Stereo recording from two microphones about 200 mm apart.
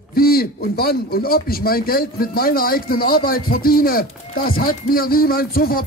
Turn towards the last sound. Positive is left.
turn(degrees=50)  # may be behind; listen again after turning